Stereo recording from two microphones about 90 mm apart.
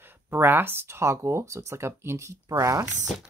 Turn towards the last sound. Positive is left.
turn(degrees=-35)  # may be behind; listen again after turning